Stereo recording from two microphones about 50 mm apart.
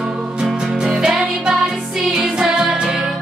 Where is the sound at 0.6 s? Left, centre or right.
Centre.